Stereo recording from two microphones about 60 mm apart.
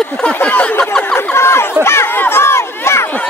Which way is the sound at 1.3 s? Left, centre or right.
Left.